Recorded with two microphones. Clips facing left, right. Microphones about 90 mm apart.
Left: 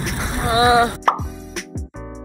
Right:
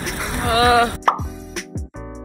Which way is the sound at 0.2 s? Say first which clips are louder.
Even; 25° left (ahead or behind).